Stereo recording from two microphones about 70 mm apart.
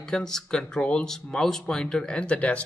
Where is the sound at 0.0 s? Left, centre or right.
Centre.